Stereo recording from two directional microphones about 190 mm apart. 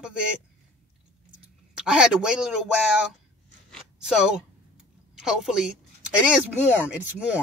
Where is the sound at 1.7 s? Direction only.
5° right (ahead or behind).